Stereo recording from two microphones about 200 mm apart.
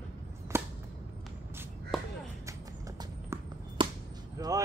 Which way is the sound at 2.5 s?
15° right (ahead or behind).